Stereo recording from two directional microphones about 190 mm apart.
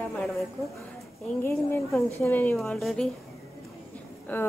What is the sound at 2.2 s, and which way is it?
Speech, 10° left (ahead or behind).